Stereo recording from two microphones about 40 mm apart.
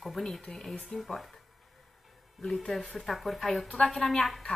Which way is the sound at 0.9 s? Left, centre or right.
Centre.